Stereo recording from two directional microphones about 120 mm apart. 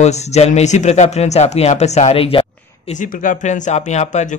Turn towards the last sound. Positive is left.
turn(degrees=75)  # may be behind; listen again after turning